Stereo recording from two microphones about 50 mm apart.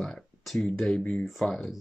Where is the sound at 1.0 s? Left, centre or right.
Left.